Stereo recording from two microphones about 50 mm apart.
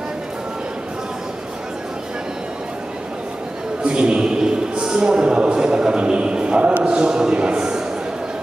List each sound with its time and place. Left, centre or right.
3.8 s a man's voice: centre